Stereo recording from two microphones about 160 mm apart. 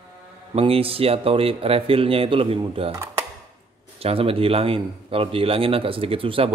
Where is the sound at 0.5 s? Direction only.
35° right (ahead or behind).